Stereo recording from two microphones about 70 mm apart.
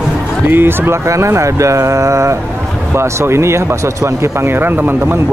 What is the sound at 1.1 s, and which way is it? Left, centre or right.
Speech, right.